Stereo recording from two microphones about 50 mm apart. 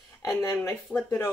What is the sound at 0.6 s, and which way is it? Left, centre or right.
Speech, left.